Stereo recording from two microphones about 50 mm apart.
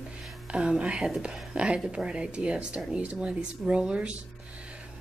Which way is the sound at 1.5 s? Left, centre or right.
Right.